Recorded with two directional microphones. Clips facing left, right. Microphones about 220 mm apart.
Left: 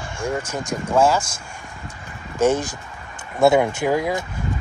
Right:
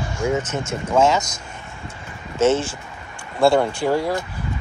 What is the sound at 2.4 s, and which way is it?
Speech, 15° left (ahead or behind).